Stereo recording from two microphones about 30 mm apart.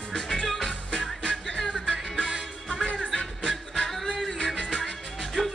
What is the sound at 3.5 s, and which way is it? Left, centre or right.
Music, centre.